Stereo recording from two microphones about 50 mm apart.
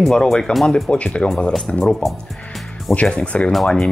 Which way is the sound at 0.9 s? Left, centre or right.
Left.